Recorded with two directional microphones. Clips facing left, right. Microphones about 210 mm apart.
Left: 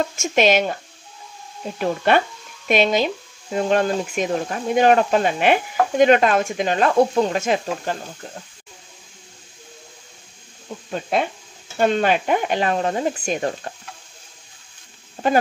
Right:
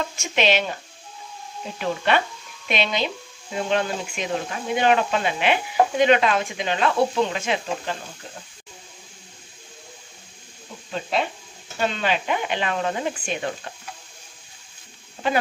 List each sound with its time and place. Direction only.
0.2 s speech: 45° left (ahead or behind)
1.8 s speech: 45° left (ahead or behind)
10.9 s speech: 50° left (ahead or behind)
15.2 s speech: 45° left (ahead or behind)